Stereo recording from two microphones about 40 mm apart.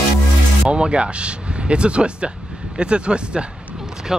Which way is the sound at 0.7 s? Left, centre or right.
Right.